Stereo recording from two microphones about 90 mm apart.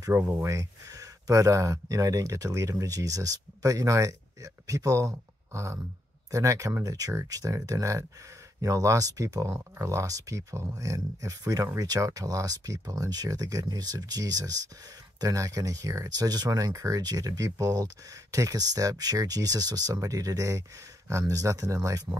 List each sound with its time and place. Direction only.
0.1 s speech: 30° right (ahead or behind)